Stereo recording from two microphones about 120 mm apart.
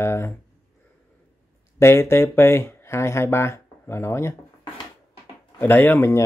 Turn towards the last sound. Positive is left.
turn(degrees=20)  # may be behind; listen again after turning